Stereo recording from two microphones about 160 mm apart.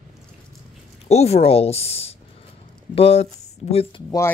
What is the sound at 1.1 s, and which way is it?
Speech, 40° left (ahead or behind).